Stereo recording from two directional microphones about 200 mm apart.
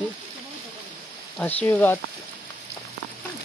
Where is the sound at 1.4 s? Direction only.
10° left (ahead or behind).